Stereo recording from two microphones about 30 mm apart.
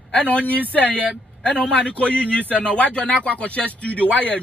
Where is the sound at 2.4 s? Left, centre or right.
Right.